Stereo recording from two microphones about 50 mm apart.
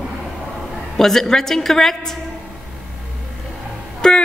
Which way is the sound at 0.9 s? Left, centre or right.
Centre.